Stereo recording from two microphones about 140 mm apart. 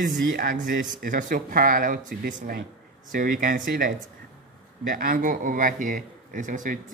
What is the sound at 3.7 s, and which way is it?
Speech, 90° right.